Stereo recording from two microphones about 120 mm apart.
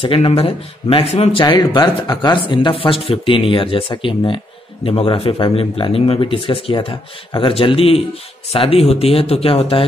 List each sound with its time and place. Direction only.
0.0 s speech: 50° left (ahead or behind)
1.4 s speech: 35° left (ahead or behind)